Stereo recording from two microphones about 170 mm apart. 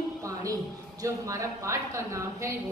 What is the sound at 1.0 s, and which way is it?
Speech, 15° right (ahead or behind).